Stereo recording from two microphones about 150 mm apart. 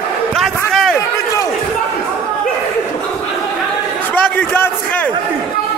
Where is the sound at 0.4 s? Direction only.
Centre (ahead or behind).